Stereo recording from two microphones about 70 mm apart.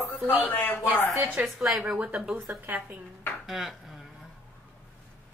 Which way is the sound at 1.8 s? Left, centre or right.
Centre.